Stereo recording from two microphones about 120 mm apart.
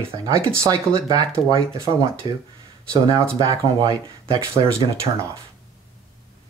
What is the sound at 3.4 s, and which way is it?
Speech, 35° right (ahead or behind).